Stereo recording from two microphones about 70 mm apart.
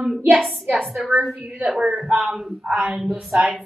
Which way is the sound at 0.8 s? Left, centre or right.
Centre.